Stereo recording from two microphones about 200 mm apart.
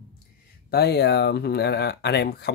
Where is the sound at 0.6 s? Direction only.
55° left (ahead or behind).